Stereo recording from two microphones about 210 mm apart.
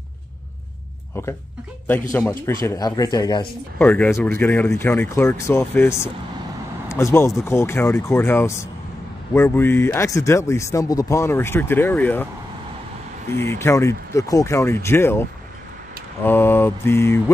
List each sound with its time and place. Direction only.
2.1 s speech: 10° left (ahead or behind)
3.7 s speech: 5° left (ahead or behind)
13.3 s speech: 10° left (ahead or behind)
16.3 s speech: 10° left (ahead or behind)